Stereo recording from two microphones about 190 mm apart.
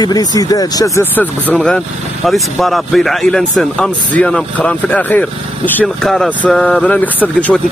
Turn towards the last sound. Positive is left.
turn(degrees=10)  # may be behind; listen again after turning